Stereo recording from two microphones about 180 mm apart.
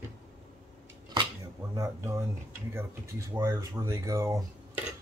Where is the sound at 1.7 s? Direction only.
15° right (ahead or behind).